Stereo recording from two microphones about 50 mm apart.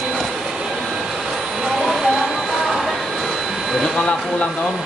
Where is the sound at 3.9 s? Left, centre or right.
Left.